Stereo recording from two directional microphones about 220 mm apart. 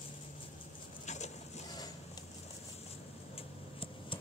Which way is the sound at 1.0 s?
30° left (ahead or behind).